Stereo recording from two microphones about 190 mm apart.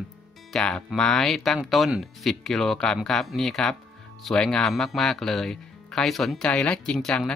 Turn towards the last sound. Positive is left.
turn(degrees=5)  # may be behind; listen again after turning